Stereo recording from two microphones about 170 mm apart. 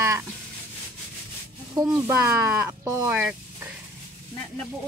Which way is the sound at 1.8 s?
10° right (ahead or behind).